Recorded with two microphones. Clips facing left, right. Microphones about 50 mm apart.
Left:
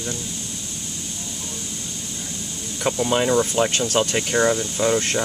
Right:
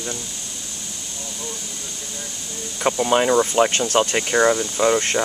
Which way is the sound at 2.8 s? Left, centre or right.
Centre.